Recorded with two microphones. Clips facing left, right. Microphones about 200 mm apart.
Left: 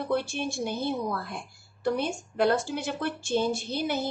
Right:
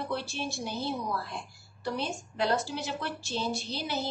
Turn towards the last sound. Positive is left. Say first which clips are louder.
# left 5 dB
turn(degrees=55)  # may be behind; listen again after turning